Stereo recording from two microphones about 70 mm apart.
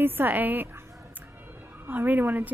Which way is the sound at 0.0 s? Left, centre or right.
Right.